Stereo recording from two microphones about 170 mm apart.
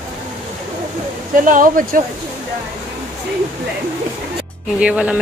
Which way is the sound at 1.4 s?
50° right (ahead or behind).